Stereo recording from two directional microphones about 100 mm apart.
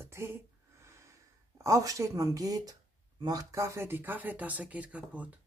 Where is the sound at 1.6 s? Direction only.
35° right (ahead or behind).